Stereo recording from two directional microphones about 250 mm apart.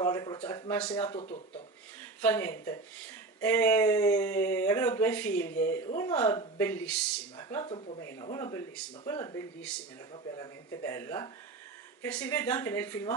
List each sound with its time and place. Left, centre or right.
0.0 s speech: centre
1.1 s speech: left
2.2 s speech: centre